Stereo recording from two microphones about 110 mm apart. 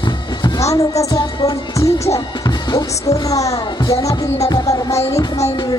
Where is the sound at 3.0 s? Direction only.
30° left (ahead or behind).